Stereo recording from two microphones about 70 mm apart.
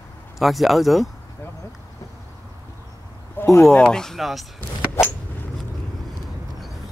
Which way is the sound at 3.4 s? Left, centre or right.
Left.